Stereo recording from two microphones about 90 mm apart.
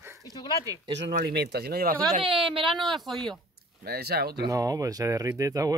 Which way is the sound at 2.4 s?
70° right (ahead or behind).